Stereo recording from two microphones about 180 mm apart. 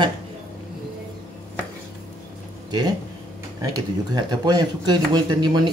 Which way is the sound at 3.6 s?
20° right (ahead or behind).